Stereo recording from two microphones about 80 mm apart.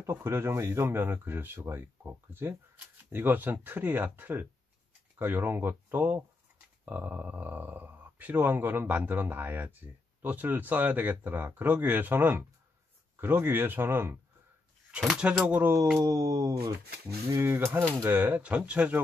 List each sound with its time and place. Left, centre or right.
0.1 s speech: right
15.1 s speech: centre
16.0 s a sound: right
17.3 s speech: right